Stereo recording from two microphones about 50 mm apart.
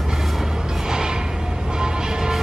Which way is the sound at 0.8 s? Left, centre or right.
Centre.